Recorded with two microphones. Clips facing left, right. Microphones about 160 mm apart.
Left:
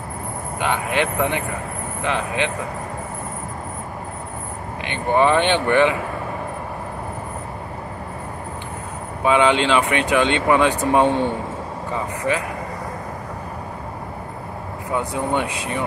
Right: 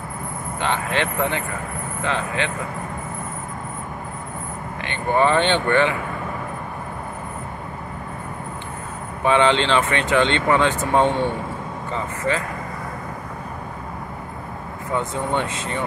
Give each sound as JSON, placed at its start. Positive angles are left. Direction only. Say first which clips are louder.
{"t": 0.6, "sound": "speech", "louder": "left 2 dB", "side_deg": 15}
{"t": 4.8, "sound": "speech", "louder": "left 2 dB", "side_deg": 15}
{"t": 9.2, "sound": "speech", "louder": "left 1 dB", "side_deg": 15}
{"t": 12.2, "sound": "speech", "louder": "left 1 dB", "side_deg": 15}
{"t": 15.0, "sound": "speech", "louder": "left 1 dB", "side_deg": 15}